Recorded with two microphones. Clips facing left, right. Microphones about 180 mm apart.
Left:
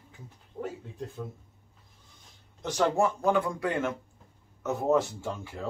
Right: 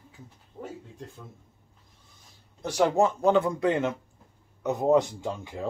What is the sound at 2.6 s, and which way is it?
Speech, 10° right (ahead or behind).